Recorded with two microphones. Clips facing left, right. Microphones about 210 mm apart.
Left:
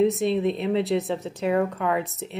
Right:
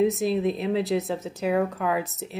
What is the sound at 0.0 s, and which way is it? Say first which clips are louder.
A woman's voice: left 1 dB; centre (ahead or behind).